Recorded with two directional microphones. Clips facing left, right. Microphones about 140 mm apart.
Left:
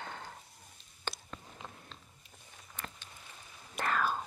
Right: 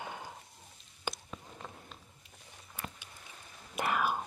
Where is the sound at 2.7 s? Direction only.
10° right (ahead or behind).